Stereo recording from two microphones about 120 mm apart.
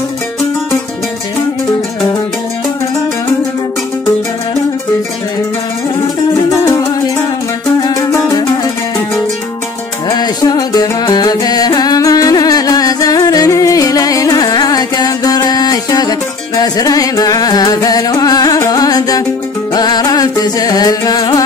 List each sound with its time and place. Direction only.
7.8 s music: 35° left (ahead or behind)
10.0 s music: 35° left (ahead or behind)